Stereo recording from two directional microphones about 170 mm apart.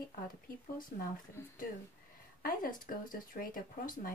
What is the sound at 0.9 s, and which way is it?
Speech, 50° left (ahead or behind).